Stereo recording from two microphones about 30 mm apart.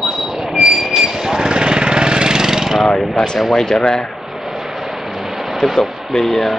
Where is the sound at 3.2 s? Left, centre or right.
Left.